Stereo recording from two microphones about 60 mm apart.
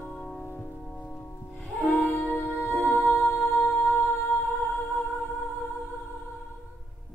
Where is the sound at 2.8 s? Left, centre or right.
Left.